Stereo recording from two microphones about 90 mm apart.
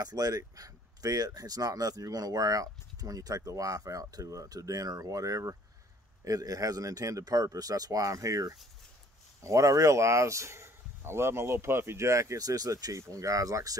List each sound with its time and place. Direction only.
0.0 s speech: 45° right (ahead or behind)